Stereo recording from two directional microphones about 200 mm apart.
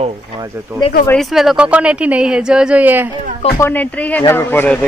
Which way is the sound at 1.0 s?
5° left (ahead or behind).